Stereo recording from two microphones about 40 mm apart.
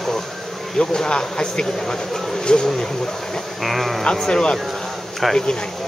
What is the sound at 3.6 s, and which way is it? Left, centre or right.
Speech, centre.